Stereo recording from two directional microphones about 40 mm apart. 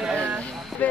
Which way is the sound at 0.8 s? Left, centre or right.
Left.